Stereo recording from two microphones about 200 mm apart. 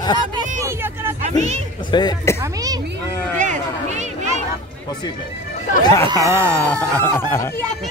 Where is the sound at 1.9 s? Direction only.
20° left (ahead or behind).